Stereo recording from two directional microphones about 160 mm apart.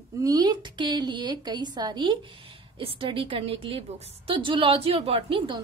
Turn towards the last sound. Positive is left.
turn(degrees=-30)  # may be behind; listen again after turning